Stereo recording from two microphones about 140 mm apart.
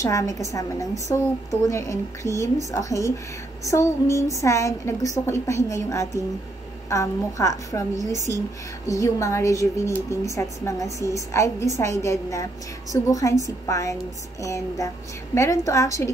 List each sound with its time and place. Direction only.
0.0 s a woman's voice: 25° left (ahead or behind)
8.8 s a woman's voice: 25° left (ahead or behind)